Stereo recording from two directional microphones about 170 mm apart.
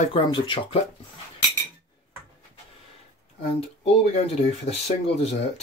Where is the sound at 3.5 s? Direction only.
35° left (ahead or behind).